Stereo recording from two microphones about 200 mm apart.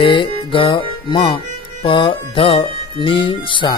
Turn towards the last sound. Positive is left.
turn(degrees=25)  # may be behind; listen again after turning